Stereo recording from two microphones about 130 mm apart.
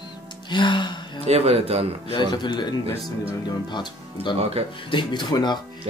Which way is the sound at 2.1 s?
35° left (ahead or behind).